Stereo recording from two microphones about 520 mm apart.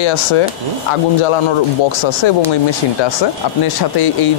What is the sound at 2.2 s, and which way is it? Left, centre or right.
Speech, left.